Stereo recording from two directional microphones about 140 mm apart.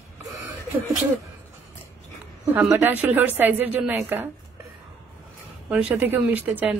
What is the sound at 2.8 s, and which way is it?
A woman's voice, 10° right (ahead or behind).